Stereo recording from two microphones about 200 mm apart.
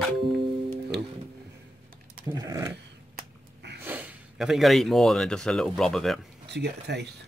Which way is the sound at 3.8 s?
10° right (ahead or behind).